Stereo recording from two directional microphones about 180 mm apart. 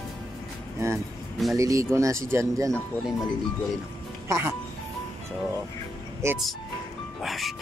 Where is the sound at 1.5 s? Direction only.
15° right (ahead or behind).